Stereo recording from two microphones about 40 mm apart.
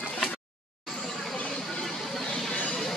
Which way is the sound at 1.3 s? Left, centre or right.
Left.